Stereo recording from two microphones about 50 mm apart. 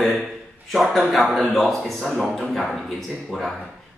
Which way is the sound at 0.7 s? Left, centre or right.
Centre.